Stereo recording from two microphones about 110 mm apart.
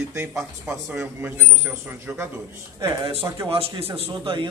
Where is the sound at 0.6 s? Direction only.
15° right (ahead or behind).